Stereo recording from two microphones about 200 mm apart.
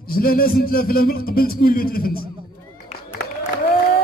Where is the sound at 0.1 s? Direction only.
45° left (ahead or behind).